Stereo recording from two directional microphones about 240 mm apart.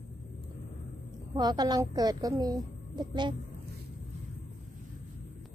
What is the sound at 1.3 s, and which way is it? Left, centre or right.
A woman's voice, centre.